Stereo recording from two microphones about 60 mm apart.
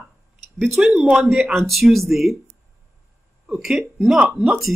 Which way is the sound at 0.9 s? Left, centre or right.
Centre.